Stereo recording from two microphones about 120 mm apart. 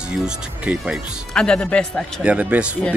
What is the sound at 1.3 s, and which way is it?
Speech, 5° left (ahead or behind).